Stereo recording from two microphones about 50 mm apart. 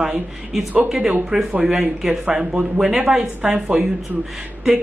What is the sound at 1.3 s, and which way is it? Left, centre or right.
Speech, centre.